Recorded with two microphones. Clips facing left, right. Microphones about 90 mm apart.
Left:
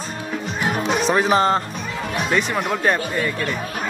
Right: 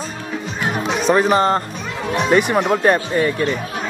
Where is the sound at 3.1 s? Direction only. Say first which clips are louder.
Right 5 dB; 20° right (ahead or behind).